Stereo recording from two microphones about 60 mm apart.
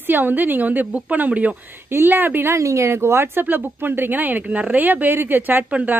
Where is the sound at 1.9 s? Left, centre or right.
Right.